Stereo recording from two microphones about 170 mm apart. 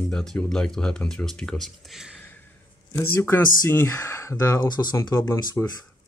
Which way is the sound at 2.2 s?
10° left (ahead or behind).